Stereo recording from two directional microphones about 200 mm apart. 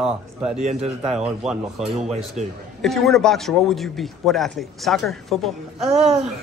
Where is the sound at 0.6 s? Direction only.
35° right (ahead or behind).